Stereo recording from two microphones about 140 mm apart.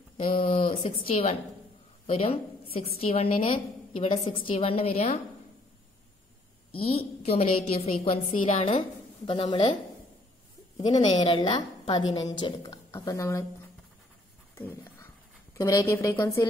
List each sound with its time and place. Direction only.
0.2 s a woman's voice: 40° left (ahead or behind)
6.7 s a woman's voice: 40° left (ahead or behind)
10.8 s a woman's voice: 30° left (ahead or behind)
14.5 s dog: 15° left (ahead or behind)
15.5 s a woman's voice: 25° left (ahead or behind)